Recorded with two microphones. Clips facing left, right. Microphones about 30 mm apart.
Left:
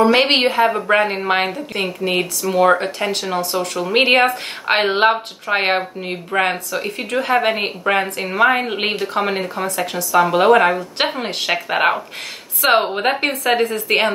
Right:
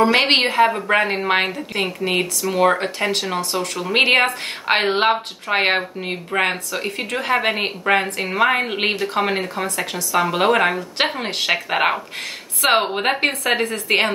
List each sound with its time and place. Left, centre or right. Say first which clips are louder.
0.0 s speech: left 2 dB; centre